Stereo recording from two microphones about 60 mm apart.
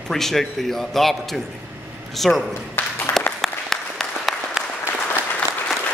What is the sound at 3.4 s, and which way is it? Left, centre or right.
Applause, centre.